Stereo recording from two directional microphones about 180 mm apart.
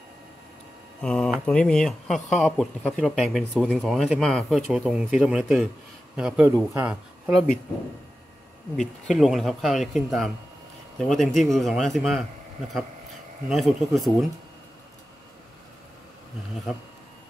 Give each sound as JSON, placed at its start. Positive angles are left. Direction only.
{"t": 1.0, "sound": "speech", "side_deg": 10}
{"t": 8.7, "sound": "speech", "side_deg": 0}
{"t": 13.5, "sound": "speech", "side_deg": 0}